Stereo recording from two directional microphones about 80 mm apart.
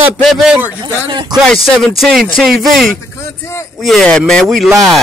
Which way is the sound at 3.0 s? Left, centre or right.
Left.